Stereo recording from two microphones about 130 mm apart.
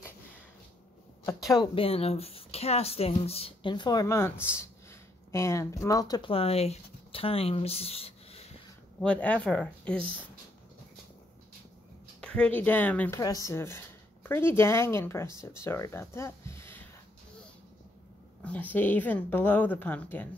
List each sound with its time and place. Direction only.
1.8 s speech: 50° left (ahead or behind)
3.7 s speech: 30° left (ahead or behind)
6.2 s speech: 45° left (ahead or behind)
9.0 s speech: 10° left (ahead or behind)
12.2 s speech: 10° left (ahead or behind)
13.2 s a woman's voice: 25° left (ahead or behind)
18.4 s speech: 10° left (ahead or behind)